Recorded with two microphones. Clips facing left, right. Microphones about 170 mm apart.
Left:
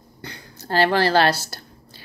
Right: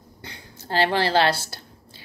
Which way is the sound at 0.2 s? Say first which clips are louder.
Left 4 dB; 20° right (ahead or behind).